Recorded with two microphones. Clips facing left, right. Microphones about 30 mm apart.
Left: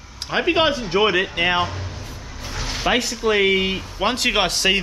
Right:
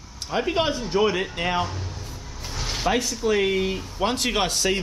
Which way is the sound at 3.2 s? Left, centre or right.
Left.